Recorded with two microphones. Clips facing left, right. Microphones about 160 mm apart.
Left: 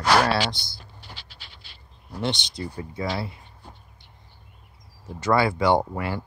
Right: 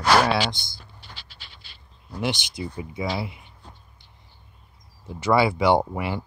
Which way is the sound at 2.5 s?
15° right (ahead or behind).